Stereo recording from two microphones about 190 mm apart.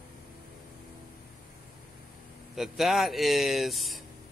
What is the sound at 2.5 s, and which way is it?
Speech, centre (ahead or behind).